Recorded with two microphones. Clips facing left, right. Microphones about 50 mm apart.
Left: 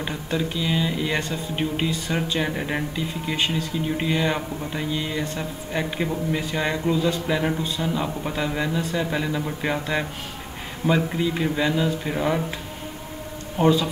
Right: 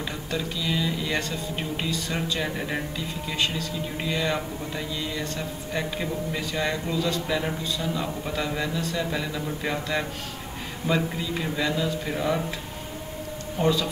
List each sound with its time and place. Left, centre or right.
0.0 s a man's voice: left
2.5 s speech: centre
3.3 s a man's voice: left
8.5 s a man's voice: centre
13.6 s a man's voice: left